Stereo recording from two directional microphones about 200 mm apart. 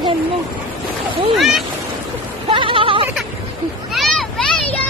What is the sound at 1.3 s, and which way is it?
Speech, centre (ahead or behind).